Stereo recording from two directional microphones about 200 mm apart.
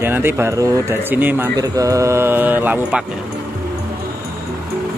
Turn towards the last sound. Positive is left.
turn(degrees=-5)  # may be behind; listen again after turning